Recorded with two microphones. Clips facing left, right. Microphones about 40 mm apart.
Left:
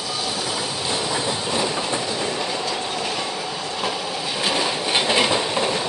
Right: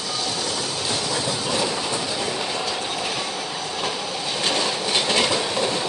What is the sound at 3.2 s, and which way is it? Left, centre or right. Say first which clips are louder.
Train: left 1 dB; centre.